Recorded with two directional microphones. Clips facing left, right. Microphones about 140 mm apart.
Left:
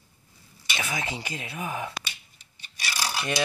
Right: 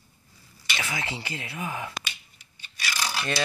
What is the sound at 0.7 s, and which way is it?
Speech, 15° left (ahead or behind).